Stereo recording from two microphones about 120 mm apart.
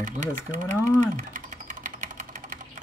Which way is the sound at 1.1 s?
90° right.